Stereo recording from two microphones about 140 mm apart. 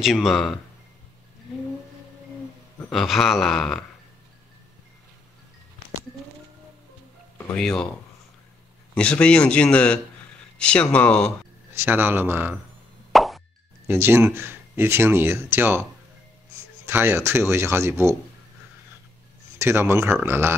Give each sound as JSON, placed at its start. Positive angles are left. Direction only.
{"t": 0.0, "sound": "speech", "side_deg": 0}
{"t": 2.9, "sound": "speech", "side_deg": 0}
{"t": 7.3, "sound": "speech", "side_deg": 5}
{"t": 8.9, "sound": "speech", "side_deg": 10}
{"t": 11.8, "sound": "speech", "side_deg": -15}
{"t": 13.1, "sound": "plop", "side_deg": 0}
{"t": 13.8, "sound": "speech", "side_deg": -15}
{"t": 19.6, "sound": "speech", "side_deg": -15}